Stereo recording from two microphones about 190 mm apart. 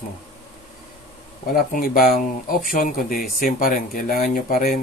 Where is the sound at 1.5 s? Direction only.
50° left (ahead or behind).